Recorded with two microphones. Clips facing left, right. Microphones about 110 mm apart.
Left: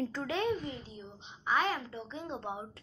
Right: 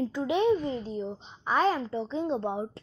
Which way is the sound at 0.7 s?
40° right (ahead or behind).